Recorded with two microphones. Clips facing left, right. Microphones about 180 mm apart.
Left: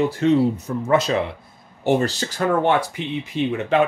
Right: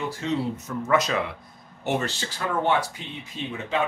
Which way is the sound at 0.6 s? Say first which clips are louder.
Left 4 dB; 30° left (ahead or behind).